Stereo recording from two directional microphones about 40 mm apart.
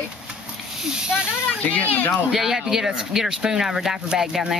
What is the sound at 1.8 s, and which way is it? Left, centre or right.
Speech, left.